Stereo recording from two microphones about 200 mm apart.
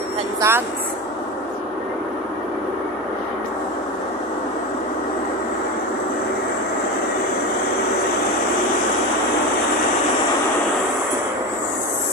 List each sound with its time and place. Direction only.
0.4 s speech: 10° right (ahead or behind)